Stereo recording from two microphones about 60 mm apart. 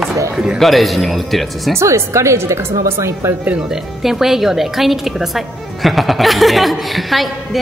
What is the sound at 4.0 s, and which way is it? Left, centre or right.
A woman's voice, centre.